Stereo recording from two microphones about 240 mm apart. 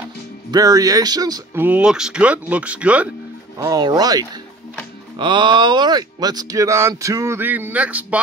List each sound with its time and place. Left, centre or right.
0.5 s speech: centre